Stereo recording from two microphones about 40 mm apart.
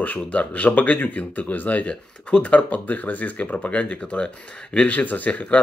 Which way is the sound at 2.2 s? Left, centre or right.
Left.